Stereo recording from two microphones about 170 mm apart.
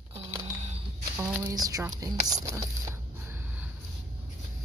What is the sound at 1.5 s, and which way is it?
Speech, 20° right (ahead or behind).